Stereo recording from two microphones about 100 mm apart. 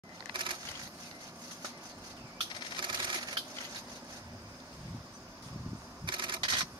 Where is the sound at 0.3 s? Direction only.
55° right (ahead or behind).